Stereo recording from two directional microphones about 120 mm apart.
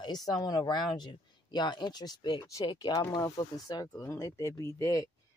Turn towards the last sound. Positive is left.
turn(degrees=25)  # may be behind; listen again after turning